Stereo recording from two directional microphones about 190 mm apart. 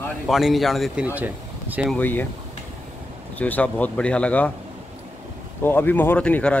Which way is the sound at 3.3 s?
10° left (ahead or behind).